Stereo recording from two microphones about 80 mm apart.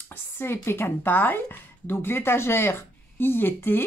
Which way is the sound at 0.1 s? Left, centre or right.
Left.